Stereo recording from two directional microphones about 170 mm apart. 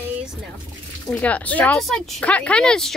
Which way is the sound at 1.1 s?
10° left (ahead or behind).